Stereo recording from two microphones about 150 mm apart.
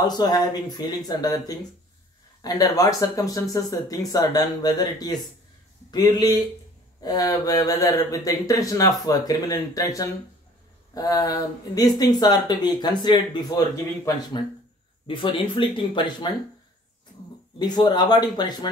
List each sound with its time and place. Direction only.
0.0 s speech: 25° left (ahead or behind)
17.6 s speech: 30° left (ahead or behind)